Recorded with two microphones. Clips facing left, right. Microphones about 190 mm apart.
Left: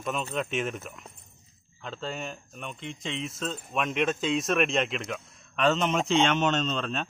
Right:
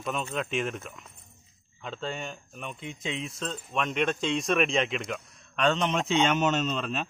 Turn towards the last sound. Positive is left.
turn(degrees=-5)  # may be behind; listen again after turning